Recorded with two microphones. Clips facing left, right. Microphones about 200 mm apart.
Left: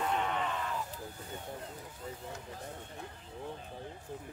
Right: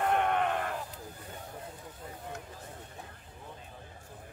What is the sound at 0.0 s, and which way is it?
Sheep, 60° right (ahead or behind).